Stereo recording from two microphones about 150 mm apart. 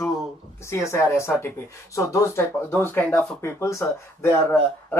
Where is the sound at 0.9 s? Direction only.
20° left (ahead or behind).